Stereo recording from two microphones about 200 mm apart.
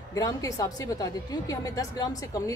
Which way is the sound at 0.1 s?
15° left (ahead or behind).